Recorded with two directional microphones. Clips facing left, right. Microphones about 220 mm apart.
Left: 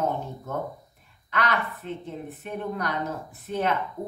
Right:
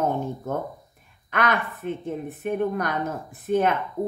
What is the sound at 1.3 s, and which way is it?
A woman's voice, 50° right (ahead or behind).